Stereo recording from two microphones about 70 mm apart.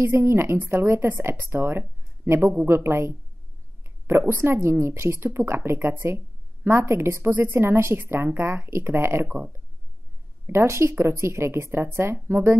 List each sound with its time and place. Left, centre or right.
0.0 s speech: right
4.3 s speech: right